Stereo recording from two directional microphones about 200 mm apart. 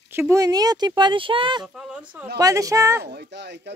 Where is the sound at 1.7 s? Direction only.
5° right (ahead or behind).